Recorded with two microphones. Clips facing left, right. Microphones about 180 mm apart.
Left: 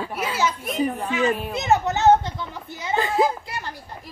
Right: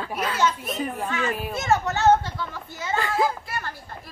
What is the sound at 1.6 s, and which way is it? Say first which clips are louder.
Speech: left 1 dB; 20° left (ahead or behind).